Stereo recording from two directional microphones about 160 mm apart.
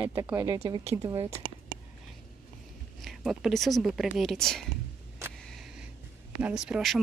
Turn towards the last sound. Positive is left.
turn(degrees=0)  # may be behind; listen again after turning